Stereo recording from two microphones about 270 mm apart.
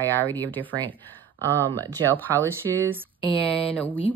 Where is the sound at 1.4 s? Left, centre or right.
Centre.